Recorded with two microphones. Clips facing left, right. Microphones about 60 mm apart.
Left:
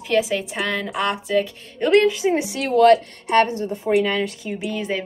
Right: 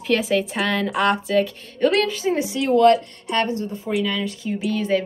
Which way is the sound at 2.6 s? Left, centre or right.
Left.